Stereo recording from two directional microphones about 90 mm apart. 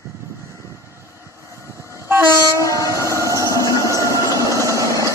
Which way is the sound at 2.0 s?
30° right (ahead or behind).